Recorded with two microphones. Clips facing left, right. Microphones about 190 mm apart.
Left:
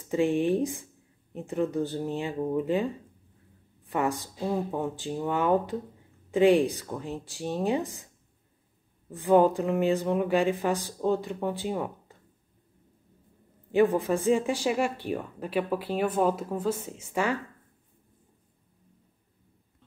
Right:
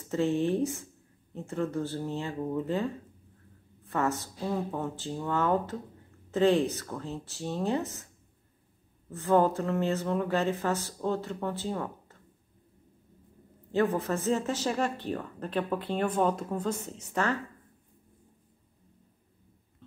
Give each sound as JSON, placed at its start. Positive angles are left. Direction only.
{"t": 0.1, "sound": "speech", "side_deg": 15}
{"t": 9.1, "sound": "speech", "side_deg": 15}
{"t": 13.7, "sound": "speech", "side_deg": 15}